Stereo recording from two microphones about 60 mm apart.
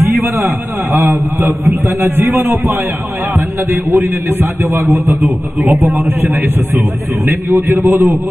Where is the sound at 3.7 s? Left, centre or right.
Right.